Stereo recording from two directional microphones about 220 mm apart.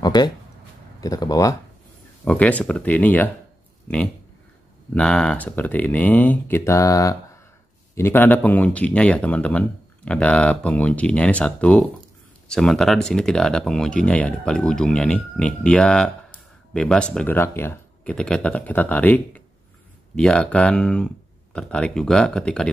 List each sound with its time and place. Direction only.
0.0 s a sound: 20° left (ahead or behind)
1.0 s speech: 15° left (ahead or behind)
4.9 s speech: 5° left (ahead or behind)